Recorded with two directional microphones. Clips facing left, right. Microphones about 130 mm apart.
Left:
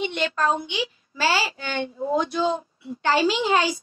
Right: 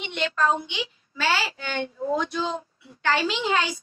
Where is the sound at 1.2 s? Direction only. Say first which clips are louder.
Left 2 dB; 30° left (ahead or behind).